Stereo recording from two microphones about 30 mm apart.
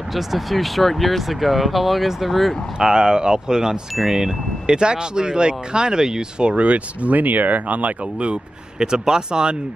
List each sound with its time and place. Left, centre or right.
0.1 s speech: centre
2.8 s speech: right
4.0 s chime: centre
4.6 s speech: right
6.4 s speech: right
8.7 s speech: right